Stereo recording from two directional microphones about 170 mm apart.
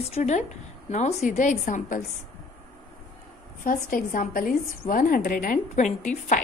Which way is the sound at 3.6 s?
50° left (ahead or behind).